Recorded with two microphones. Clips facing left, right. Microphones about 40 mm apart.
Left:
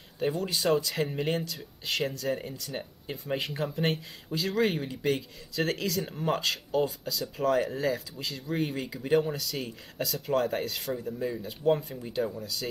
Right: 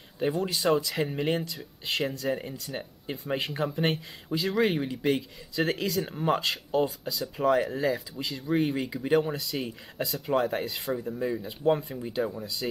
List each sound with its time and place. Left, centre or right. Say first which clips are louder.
0.2 s speech: right 2 dB; centre